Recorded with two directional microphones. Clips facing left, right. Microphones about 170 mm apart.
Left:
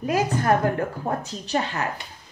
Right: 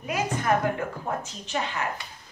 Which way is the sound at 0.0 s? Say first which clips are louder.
Left 5 dB; 40° left (ahead or behind).